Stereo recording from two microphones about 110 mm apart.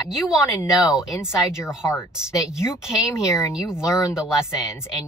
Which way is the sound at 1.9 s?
25° left (ahead or behind).